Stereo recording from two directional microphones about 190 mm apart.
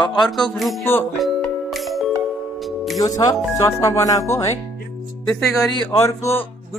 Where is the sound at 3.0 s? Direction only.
20° left (ahead or behind).